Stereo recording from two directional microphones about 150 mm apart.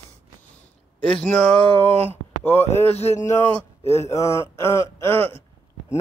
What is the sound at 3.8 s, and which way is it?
Speech, 45° left (ahead or behind).